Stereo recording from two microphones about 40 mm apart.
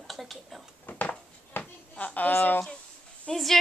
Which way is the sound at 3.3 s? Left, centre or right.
Centre.